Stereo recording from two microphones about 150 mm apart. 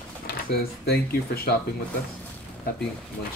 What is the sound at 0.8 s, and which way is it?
Speech, 90° left.